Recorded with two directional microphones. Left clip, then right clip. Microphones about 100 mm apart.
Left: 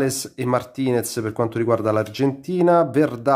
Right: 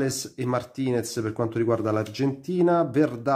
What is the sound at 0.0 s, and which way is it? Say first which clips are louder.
Speech: left 5 dB; 30° left (ahead or behind).